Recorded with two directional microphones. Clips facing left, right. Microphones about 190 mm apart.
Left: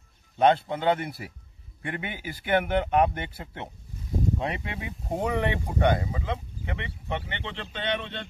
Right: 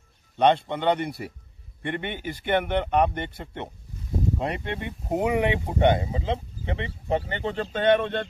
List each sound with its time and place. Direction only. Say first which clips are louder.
0.4 s a man's voice: right 1 dB; 5° left (ahead or behind)
5.2 s speech: right 4 dB; 15° right (ahead or behind); by 8.3 s 50° right (ahead or behind)